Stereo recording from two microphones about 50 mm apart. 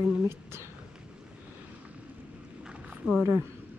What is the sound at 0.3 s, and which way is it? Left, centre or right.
Speech, right.